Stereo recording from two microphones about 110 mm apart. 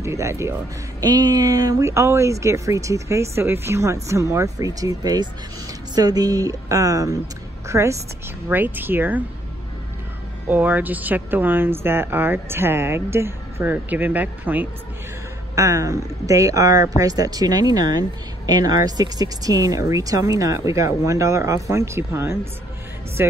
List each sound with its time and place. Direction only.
0.0 s speech: 25° right (ahead or behind)
1.0 s speech: 35° right (ahead or behind)
8.5 s speech: 15° right (ahead or behind)
10.5 s speech: 15° right (ahead or behind)
15.5 s speech: 30° right (ahead or behind)